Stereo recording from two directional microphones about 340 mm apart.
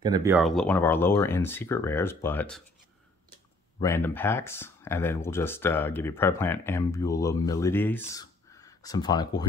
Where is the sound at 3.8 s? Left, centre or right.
Centre.